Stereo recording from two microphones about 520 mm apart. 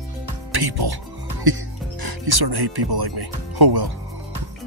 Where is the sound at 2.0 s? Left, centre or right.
Right.